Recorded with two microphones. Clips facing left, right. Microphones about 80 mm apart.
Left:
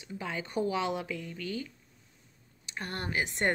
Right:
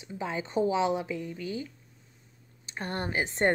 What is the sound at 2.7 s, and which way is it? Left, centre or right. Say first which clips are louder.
Speech: right 3 dB; right.